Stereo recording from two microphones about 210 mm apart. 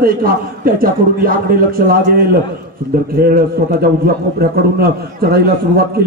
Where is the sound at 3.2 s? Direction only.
50° right (ahead or behind).